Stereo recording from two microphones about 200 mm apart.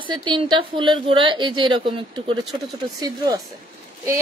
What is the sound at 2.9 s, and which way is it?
Speech, 20° right (ahead or behind).